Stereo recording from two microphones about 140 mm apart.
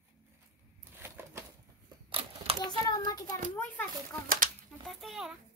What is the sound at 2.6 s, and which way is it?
Speech, 30° left (ahead or behind).